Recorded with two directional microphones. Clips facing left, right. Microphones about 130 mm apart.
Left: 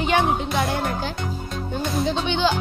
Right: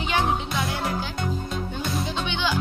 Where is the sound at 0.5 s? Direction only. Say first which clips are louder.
Left 4 dB; 50° left (ahead or behind).